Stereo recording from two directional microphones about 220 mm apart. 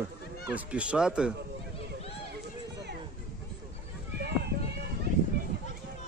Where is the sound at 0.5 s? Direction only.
5° right (ahead or behind).